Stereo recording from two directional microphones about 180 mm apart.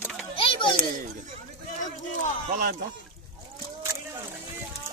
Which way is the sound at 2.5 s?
55° right (ahead or behind).